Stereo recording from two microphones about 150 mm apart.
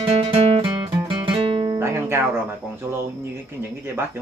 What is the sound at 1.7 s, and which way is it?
Music, 20° right (ahead or behind).